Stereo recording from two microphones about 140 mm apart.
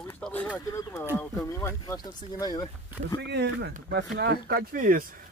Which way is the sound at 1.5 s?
20° left (ahead or behind).